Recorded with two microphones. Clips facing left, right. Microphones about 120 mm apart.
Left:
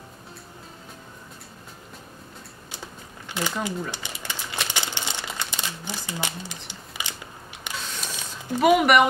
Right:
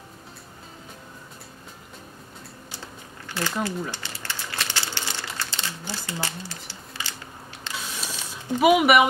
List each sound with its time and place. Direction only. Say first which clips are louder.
3.3 s speech: even; 15° left (ahead or behind)
3.9 s crumpling: left 1 dB; 15° left (ahead or behind)
6.7 s shuffling cards: left 1 dB; 15° left (ahead or behind)
7.7 s a sound: even; 5° right (ahead or behind)